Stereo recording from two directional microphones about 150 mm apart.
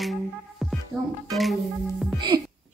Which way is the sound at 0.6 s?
Centre (ahead or behind).